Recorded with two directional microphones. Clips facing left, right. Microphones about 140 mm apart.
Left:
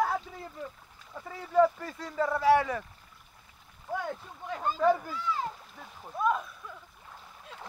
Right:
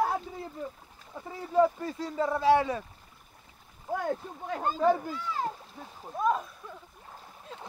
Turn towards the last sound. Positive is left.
turn(degrees=-30)  # may be behind; listen again after turning